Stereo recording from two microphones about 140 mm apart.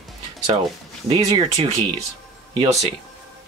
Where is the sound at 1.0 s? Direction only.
40° right (ahead or behind).